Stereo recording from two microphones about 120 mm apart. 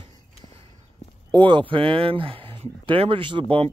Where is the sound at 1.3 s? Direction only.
40° right (ahead or behind).